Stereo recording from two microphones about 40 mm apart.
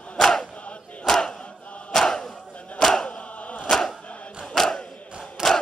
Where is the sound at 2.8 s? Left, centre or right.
Centre.